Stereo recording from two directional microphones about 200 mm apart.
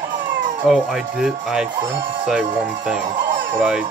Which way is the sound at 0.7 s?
5° right (ahead or behind).